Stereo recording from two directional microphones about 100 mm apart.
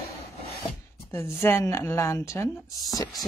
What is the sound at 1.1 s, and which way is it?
A woman's voice, 25° left (ahead or behind).